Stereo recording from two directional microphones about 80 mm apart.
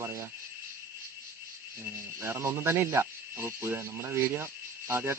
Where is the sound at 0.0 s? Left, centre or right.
Right.